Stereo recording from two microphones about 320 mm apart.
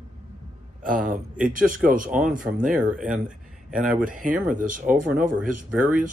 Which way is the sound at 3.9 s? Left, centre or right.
Right.